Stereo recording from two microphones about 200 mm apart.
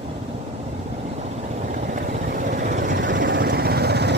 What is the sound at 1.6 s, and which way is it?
Vehicle, 40° right (ahead or behind).